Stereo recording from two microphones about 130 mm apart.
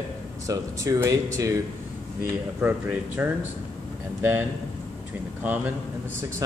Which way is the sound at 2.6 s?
15° right (ahead or behind).